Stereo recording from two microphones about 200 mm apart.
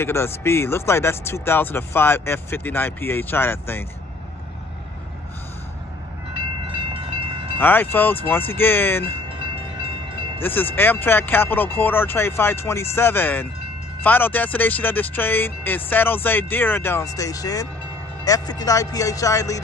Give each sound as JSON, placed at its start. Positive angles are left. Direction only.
{"t": 0.0, "sound": "speech", "side_deg": 10}
{"t": 6.3, "sound": "train", "side_deg": -25}
{"t": 7.5, "sound": "speech", "side_deg": 10}
{"t": 10.4, "sound": "speech", "side_deg": 10}